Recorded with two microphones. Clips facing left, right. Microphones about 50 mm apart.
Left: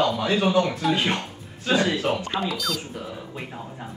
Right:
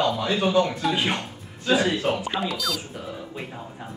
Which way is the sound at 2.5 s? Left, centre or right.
Centre.